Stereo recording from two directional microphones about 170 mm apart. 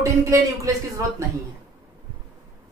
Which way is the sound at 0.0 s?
20° right (ahead or behind).